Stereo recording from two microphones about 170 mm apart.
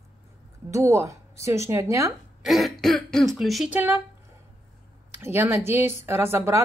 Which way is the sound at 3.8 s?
10° right (ahead or behind).